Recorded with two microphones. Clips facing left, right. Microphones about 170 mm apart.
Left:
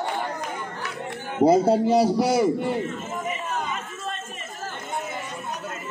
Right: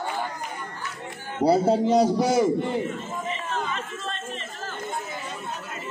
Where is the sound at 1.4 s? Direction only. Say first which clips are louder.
Left 2 dB; 15° left (ahead or behind).